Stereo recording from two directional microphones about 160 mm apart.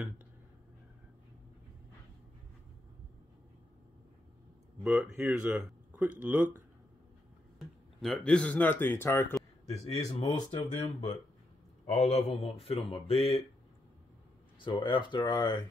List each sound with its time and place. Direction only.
4.8 s speech: 5° right (ahead or behind)
8.0 s speech: 5° left (ahead or behind)
9.7 s a man's voice: 45° left (ahead or behind)
10.2 s speech: 30° left (ahead or behind)
11.8 s speech: 40° left (ahead or behind)
14.6 s speech: 30° left (ahead or behind)